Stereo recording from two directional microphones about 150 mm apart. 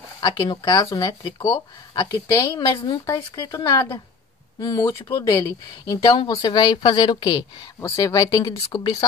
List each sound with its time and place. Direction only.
0.2 s a woman's voice: 25° left (ahead or behind)